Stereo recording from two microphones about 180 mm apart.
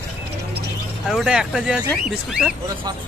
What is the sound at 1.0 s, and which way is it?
Speech, centre (ahead or behind).